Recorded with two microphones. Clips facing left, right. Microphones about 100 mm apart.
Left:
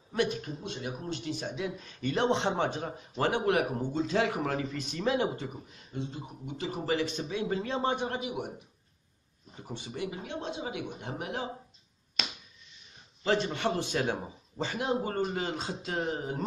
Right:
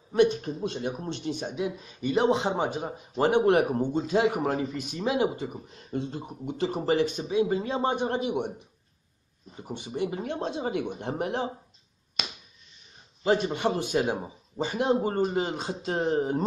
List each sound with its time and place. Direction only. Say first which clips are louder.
0.1 s speech: right 8 dB; 25° right (ahead or behind)
0.4 s speech: right 7 dB; 40° right (ahead or behind)
1.0 s a man's voice: right 3 dB; 20° right (ahead or behind)
3.4 s speech: right 6 dB; 30° right (ahead or behind)
3.9 s a man's voice: right 2 dB; 15° right (ahead or behind)
5.7 s speech: right 6 dB; 40° right (ahead or behind)
7.1 s a man's voice: right 7 dB; 20° right (ahead or behind)
8.1 s speech: right 7 dB; 30° right (ahead or behind)
9.6 s speech: right 4 dB; 20° right (ahead or behind)
9.9 s speech: right 7 dB; 35° right (ahead or behind)
13.2 s a man's voice: right 4 dB; 15° right (ahead or behind)
14.8 s speech: right 6 dB; 25° right (ahead or behind)
15.9 s speech: right 8 dB; 35° right (ahead or behind)